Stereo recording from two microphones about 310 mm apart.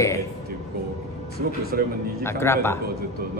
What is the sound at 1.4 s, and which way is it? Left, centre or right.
Speech, right.